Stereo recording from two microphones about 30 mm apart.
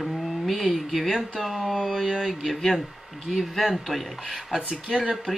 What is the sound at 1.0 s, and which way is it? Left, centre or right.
Speech, centre.